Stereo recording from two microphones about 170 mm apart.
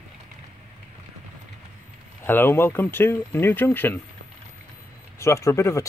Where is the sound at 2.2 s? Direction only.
10° left (ahead or behind).